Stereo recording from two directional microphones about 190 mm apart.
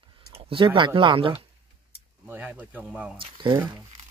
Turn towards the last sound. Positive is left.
turn(degrees=-25)  # may be behind; listen again after turning